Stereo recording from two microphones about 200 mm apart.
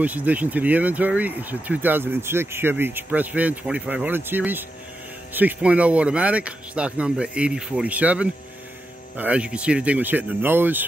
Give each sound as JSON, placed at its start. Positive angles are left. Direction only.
{"t": 0.0, "sound": "speech", "side_deg": -10}